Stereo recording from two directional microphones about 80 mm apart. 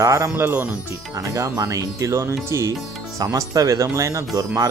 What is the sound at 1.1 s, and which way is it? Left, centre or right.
Speech, right.